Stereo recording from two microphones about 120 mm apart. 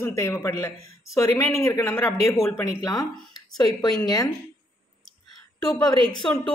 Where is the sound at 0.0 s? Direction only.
25° left (ahead or behind).